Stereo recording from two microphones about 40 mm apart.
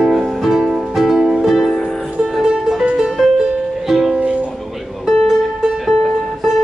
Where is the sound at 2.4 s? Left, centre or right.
Centre.